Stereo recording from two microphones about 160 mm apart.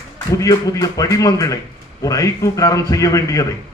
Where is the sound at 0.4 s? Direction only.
25° left (ahead or behind).